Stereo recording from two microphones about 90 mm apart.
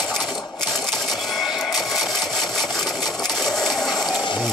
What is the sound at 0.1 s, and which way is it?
Music, centre (ahead or behind).